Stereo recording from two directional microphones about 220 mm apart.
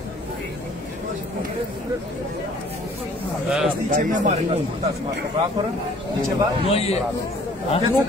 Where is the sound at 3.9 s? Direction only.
35° right (ahead or behind).